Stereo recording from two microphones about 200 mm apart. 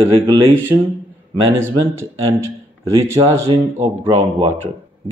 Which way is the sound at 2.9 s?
15° right (ahead or behind).